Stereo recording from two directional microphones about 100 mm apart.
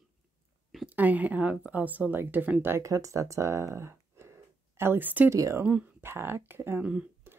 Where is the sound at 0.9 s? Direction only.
15° right (ahead or behind).